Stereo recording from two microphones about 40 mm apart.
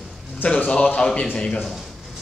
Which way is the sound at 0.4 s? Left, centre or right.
Left.